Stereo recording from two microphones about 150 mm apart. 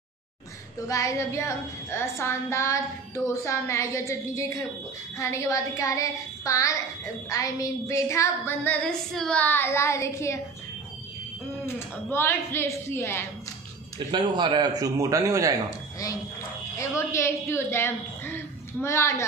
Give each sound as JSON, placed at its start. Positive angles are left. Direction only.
{"t": 0.8, "sound": "female singing", "side_deg": 20}
{"t": 11.6, "sound": "a woman's voice", "side_deg": 15}
{"t": 13.9, "sound": "a man's voice", "side_deg": -30}
{"t": 17.1, "sound": "a woman's voice", "side_deg": 20}